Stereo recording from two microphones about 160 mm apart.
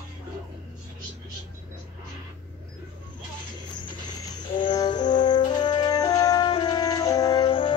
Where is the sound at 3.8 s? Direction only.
30° left (ahead or behind).